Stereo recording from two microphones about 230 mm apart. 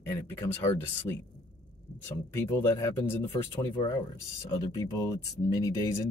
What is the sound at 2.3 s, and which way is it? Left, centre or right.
Speech, centre.